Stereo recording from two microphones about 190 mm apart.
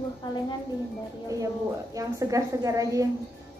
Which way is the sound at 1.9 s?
15° right (ahead or behind).